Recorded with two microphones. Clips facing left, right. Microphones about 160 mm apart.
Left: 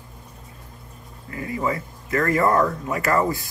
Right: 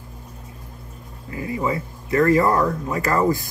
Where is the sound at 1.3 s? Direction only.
25° right (ahead or behind).